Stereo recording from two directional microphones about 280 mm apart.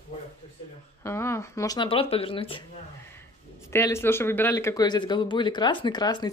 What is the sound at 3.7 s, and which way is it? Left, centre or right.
Speech, centre.